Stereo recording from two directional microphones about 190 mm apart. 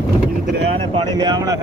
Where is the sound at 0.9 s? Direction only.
20° right (ahead or behind).